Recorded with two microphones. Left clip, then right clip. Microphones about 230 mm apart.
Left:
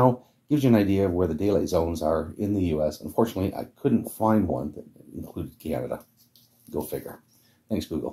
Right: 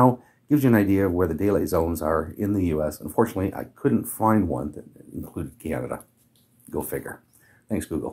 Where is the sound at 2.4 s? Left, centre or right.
Centre.